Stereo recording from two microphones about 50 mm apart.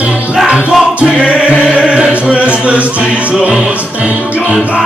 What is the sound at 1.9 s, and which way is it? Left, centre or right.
Chant, right.